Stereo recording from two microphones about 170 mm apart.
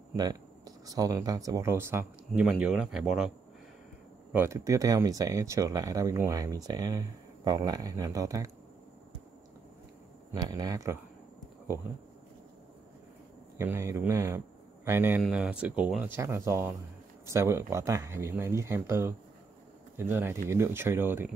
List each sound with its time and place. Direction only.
0.1 s speech: 25° right (ahead or behind)
2.4 s speech: 5° right (ahead or behind)
4.3 s speech: 15° right (ahead or behind)
10.3 s speech: 25° right (ahead or behind)
13.6 s speech: 15° right (ahead or behind)